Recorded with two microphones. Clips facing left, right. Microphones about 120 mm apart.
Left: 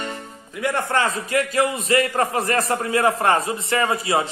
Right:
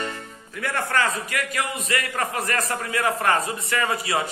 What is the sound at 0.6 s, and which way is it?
A man's voice, 20° left (ahead or behind).